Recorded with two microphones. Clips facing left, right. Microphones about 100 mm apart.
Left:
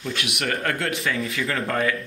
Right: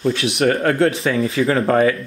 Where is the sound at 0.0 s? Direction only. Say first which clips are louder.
Right 11 dB; 30° right (ahead or behind).